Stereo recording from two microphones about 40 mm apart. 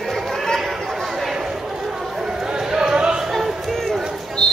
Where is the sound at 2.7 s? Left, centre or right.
Centre.